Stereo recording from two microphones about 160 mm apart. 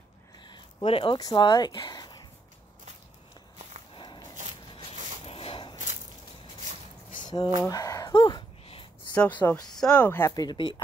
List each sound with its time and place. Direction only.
0.4 s speech: 30° left (ahead or behind)
3.9 s biting: 30° left (ahead or behind)
5.2 s walk: 35° left (ahead or behind)
7.2 s a sound: 25° left (ahead or behind)
9.1 s speech: 10° left (ahead or behind)
10.3 s speech: 25° left (ahead or behind)